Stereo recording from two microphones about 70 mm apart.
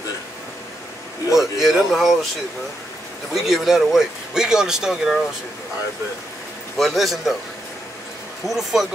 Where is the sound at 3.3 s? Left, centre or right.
Centre.